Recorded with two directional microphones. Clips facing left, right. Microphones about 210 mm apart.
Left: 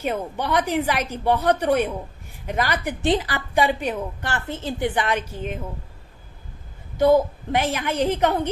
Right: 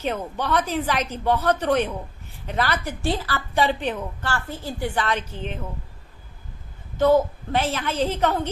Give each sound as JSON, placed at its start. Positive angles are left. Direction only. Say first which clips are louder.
{"t": 0.0, "sound": "a woman's voice", "louder": "left 1 dB", "side_deg": 10}
{"t": 7.0, "sound": "a woman's voice", "louder": "left 1 dB", "side_deg": 15}